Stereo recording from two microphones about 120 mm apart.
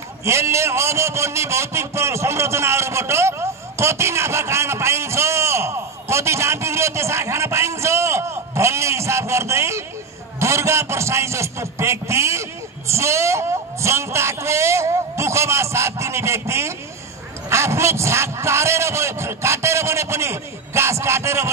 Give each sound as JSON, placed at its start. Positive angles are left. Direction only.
{"t": 0.2, "sound": "a man's voice", "side_deg": -25}